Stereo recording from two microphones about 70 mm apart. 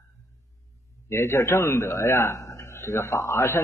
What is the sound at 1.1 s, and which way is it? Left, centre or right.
A man's voice, left.